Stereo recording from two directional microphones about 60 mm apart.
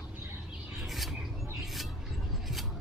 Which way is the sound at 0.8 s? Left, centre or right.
Centre.